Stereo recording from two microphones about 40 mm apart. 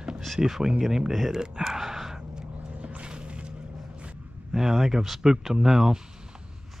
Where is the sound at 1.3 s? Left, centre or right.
Centre.